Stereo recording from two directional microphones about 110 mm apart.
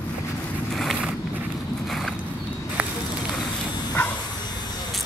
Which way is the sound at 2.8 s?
15° right (ahead or behind).